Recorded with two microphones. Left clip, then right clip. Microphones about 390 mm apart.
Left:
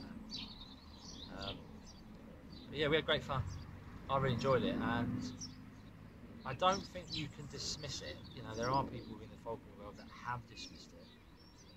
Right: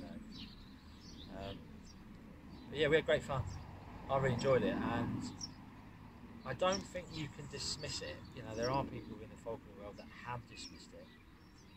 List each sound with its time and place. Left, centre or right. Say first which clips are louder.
2.7 s speech: right 2 dB; centre